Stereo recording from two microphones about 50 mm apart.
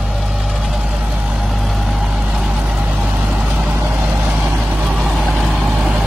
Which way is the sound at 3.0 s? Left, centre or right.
Centre.